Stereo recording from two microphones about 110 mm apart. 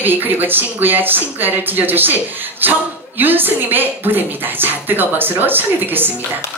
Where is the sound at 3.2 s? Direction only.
15° right (ahead or behind).